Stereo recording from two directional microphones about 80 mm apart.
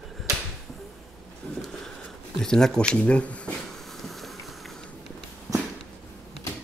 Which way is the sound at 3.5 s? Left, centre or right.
Centre.